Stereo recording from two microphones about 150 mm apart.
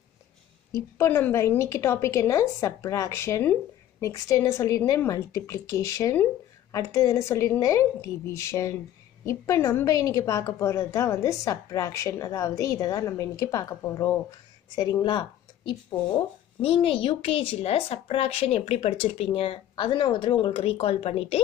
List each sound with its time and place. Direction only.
0.7 s a woman's voice: 15° left (ahead or behind); by 21.4 s 40° left (ahead or behind)